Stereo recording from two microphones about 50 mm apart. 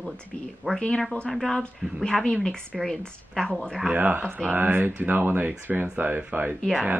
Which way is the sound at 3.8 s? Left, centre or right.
Right.